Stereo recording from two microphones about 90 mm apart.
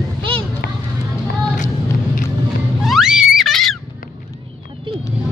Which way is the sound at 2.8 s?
5° right (ahead or behind).